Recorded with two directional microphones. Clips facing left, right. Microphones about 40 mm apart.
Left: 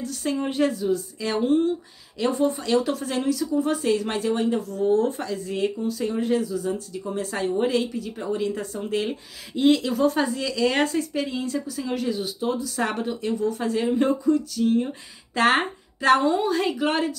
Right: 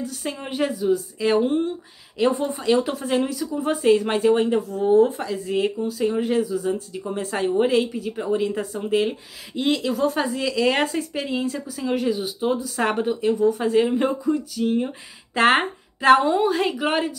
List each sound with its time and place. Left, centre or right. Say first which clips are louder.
0.0 s speech: left 3 dB; centre
5.1 s speech: right 4 dB; centre
9.6 s speech: left 2 dB; centre